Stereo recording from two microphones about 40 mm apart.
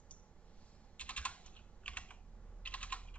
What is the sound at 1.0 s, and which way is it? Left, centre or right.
Computer keyboard, left.